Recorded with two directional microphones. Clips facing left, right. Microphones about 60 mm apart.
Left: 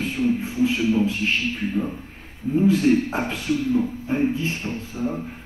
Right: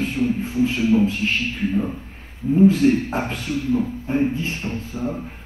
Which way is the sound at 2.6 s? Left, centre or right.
Right.